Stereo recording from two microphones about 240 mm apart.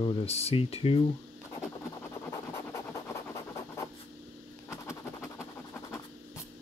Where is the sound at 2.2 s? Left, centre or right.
Centre.